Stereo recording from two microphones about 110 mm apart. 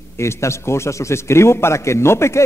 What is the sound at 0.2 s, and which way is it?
A man's voice, 25° left (ahead or behind).